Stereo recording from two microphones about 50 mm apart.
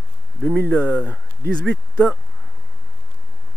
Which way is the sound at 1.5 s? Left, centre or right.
Centre.